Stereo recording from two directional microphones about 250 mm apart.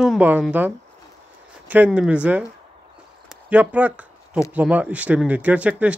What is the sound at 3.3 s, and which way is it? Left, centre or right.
Zipper, centre.